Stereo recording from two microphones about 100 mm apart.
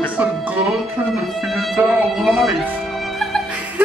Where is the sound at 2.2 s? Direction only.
Centre (ahead or behind).